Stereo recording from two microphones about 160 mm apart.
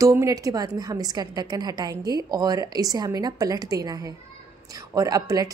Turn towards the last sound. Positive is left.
turn(degrees=-20)  # may be behind; listen again after turning